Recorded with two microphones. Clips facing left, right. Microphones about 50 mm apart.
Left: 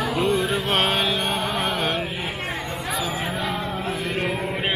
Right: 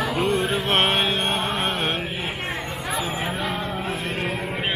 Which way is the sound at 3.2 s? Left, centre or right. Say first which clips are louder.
Even; centre.